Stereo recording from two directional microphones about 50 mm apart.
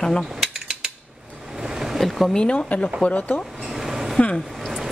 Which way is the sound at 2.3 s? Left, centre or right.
Centre.